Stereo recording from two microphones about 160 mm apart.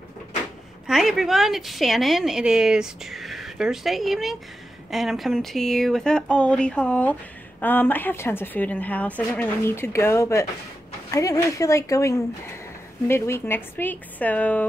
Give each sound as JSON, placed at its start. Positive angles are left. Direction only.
{"t": 0.8, "sound": "a woman's voice", "side_deg": 0}